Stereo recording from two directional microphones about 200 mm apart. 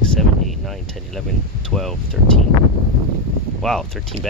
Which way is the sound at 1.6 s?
Centre (ahead or behind).